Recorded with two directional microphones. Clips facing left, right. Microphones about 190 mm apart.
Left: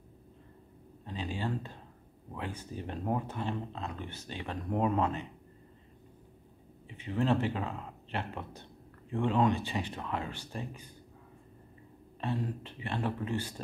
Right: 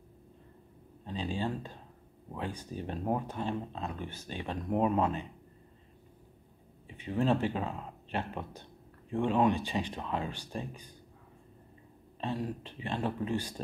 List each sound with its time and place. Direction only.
1.0 s a sound: 15° right (ahead or behind)
2.3 s speech: 15° right (ahead or behind)
7.1 s speech: 15° right (ahead or behind)
12.2 s speech: 15° right (ahead or behind)